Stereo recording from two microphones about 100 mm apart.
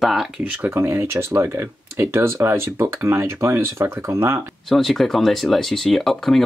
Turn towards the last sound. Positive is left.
turn(degrees=0)  # may be behind; listen again after turning